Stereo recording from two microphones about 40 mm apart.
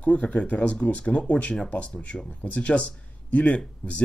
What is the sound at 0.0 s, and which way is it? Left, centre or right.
Speech, left.